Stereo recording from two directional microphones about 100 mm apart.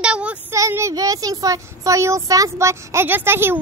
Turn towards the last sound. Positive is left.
turn(degrees=-20)  # may be behind; listen again after turning